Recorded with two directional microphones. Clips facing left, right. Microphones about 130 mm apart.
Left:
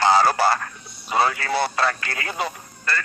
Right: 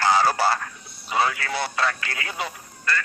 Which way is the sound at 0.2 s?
50° left (ahead or behind).